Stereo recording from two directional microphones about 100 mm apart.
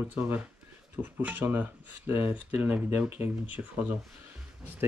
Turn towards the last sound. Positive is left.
turn(degrees=-20)  # may be behind; listen again after turning